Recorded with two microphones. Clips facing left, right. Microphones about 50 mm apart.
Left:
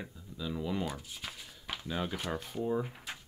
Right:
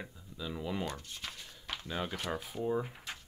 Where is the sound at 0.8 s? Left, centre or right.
Centre.